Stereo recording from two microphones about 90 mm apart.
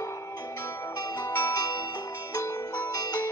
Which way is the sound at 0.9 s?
40° left (ahead or behind).